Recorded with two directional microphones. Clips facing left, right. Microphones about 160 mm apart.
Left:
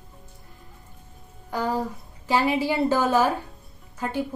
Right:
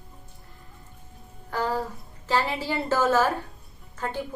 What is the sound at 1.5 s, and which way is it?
A woman's voice, 15° left (ahead or behind).